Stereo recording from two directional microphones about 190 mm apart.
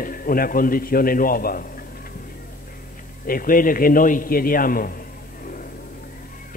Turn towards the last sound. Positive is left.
turn(degrees=50)  # may be behind; listen again after turning